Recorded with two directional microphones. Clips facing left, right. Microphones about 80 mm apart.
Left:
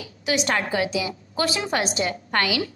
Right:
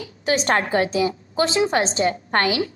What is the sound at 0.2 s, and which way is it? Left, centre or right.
A woman's voice, right.